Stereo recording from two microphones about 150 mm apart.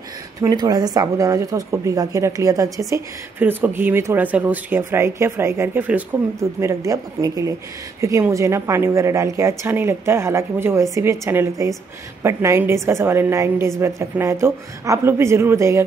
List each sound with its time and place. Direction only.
0.4 s a woman's voice: 25° right (ahead or behind)
6.6 s a woman's voice: 20° right (ahead or behind)